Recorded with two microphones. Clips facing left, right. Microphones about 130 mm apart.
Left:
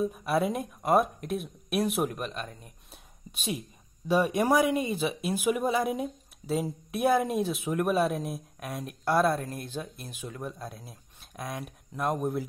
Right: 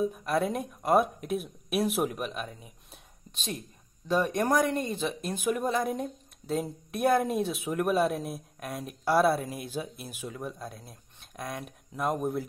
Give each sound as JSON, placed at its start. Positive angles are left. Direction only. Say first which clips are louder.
{"t": 0.0, "sound": "speech", "louder": "left 1 dB", "side_deg": 5}
{"t": 3.3, "sound": "speech", "louder": "left 3 dB", "side_deg": 10}